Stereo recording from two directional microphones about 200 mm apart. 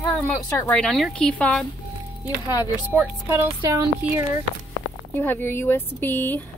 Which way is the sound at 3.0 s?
10° right (ahead or behind).